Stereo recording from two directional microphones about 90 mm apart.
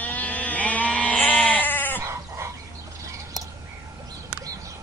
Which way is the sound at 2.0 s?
30° right (ahead or behind).